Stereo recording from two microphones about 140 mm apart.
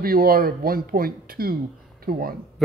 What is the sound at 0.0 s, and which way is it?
Speech, 90° right.